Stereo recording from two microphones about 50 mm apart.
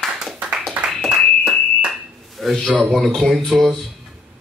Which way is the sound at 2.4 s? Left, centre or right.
Centre.